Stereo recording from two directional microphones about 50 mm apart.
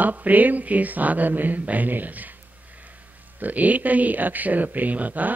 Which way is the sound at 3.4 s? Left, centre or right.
Right.